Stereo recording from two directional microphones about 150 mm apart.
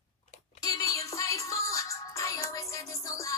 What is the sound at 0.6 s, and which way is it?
Music, 25° left (ahead or behind).